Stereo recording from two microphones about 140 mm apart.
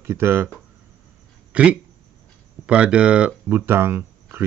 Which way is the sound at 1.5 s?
5° right (ahead or behind).